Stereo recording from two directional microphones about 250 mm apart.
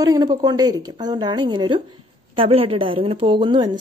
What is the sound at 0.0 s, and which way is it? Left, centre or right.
A woman's voice, centre.